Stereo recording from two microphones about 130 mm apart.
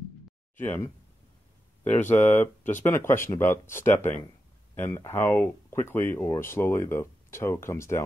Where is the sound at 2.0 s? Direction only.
15° left (ahead or behind).